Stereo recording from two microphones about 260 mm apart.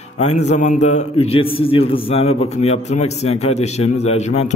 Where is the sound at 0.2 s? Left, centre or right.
Left.